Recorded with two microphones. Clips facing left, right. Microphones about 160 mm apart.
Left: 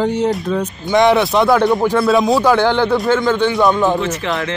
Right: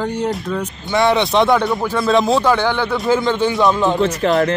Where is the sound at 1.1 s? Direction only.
Centre (ahead or behind).